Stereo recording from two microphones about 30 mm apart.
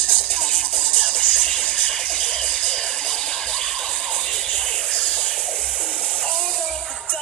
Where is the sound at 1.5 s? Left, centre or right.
Left.